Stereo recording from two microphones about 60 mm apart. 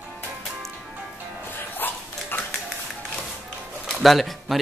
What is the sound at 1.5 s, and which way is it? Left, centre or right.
Dog, left.